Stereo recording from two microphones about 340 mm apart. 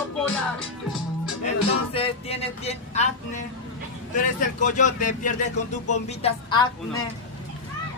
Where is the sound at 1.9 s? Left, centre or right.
Centre.